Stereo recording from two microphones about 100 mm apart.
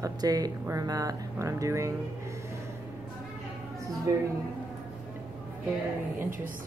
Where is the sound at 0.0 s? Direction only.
40° right (ahead or behind).